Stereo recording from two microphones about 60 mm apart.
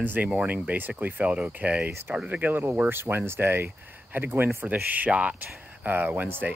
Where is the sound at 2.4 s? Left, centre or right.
Right.